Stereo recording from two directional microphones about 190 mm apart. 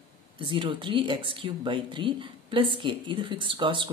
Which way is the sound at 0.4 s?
25° right (ahead or behind).